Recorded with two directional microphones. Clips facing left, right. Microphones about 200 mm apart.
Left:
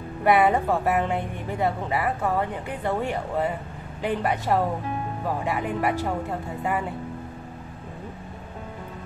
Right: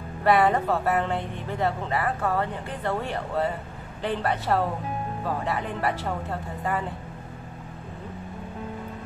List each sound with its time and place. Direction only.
0.2 s a woman's voice: 10° left (ahead or behind)